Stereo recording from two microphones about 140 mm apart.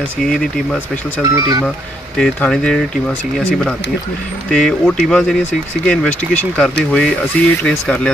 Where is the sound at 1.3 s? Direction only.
25° right (ahead or behind).